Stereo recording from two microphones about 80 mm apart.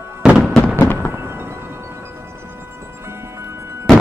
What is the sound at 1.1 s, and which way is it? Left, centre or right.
Music, right.